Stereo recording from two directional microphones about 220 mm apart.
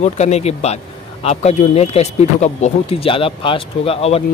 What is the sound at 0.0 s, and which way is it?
Speech, 30° left (ahead or behind).